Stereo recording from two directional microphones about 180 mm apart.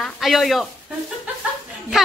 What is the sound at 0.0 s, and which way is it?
Speech, centre (ahead or behind).